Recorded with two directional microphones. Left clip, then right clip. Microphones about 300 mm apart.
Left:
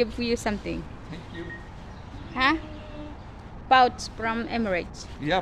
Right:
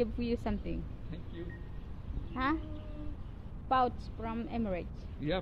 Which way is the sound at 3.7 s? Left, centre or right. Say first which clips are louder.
Left 11 dB; centre.